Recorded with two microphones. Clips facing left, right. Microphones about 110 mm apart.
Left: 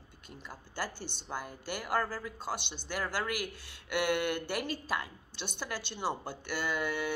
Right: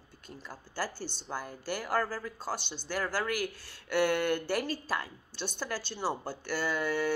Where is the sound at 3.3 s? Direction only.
40° right (ahead or behind).